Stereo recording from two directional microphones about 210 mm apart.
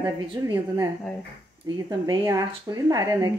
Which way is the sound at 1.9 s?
15° right (ahead or behind).